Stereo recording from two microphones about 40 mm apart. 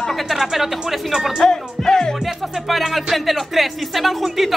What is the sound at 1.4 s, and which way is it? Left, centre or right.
Music, centre.